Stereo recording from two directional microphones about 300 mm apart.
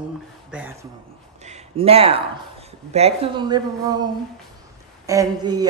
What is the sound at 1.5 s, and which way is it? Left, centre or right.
A woman's voice, centre.